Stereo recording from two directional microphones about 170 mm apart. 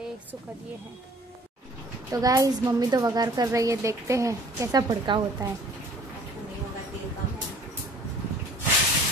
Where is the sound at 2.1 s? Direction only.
20° right (ahead or behind).